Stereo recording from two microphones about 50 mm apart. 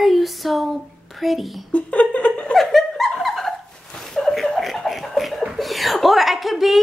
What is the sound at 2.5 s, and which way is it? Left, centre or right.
Laughter, centre.